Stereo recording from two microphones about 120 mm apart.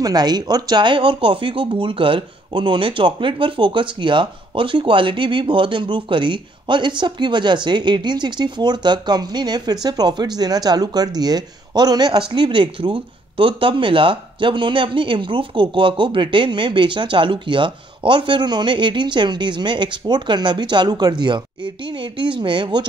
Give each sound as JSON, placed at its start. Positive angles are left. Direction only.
{"t": 0.0, "sound": "speech", "side_deg": -35}